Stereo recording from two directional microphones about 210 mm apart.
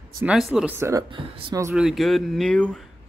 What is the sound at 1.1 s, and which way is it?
Speech, 25° right (ahead or behind).